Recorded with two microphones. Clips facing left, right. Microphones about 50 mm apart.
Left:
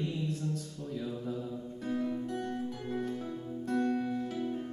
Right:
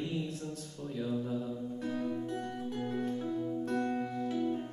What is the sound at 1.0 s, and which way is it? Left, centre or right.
Mantra, centre.